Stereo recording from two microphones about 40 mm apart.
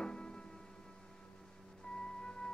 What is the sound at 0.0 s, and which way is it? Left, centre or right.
Music, left.